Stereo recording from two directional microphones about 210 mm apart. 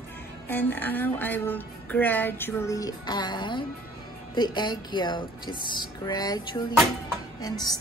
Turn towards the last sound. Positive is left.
turn(degrees=15)  # may be behind; listen again after turning